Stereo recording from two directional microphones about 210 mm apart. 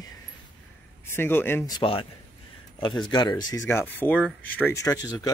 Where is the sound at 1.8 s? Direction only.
25° left (ahead or behind).